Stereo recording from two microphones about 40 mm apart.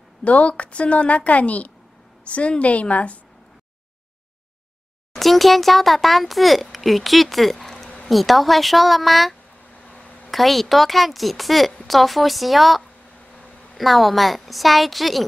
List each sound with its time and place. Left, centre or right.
0.2 s a woman's voice: left
5.2 s speech: centre
9.8 s a sound: left
10.3 s speech: centre